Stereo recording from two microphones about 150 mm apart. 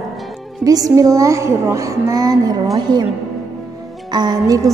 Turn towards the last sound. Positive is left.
turn(degrees=-25)  # may be behind; listen again after turning